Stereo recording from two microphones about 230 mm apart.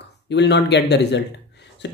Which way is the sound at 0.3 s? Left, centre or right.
Left.